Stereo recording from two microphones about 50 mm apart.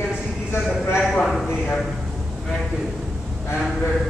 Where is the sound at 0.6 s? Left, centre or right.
Centre.